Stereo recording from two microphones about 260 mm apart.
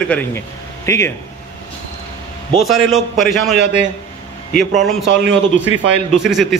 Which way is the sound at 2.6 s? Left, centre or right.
Centre.